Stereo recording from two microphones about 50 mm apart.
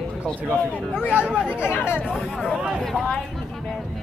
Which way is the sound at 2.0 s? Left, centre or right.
Centre.